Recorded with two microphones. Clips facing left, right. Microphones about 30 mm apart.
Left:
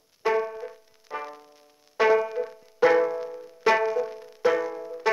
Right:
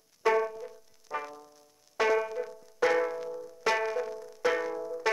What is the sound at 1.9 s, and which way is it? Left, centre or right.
Music, centre.